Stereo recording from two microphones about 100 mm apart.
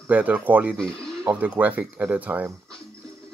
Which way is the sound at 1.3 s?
15° right (ahead or behind).